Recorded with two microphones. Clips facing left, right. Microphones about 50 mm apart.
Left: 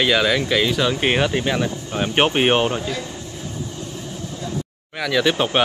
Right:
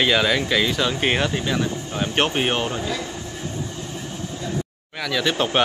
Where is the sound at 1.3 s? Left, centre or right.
Left.